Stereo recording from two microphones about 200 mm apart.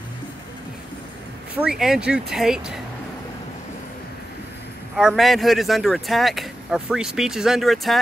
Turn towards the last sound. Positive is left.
turn(degrees=0)  # may be behind; listen again after turning